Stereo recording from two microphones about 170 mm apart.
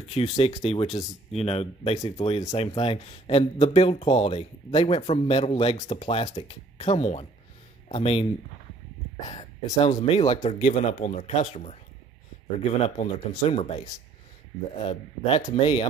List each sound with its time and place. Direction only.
0.1 s speech: 40° left (ahead or behind)
2.0 s speech: 20° left (ahead or behind)
2.2 s speech: 35° left (ahead or behind)
9.3 s speech: 30° left (ahead or behind)
10.4 s speech: 45° left (ahead or behind)
12.8 s speech: 40° left (ahead or behind)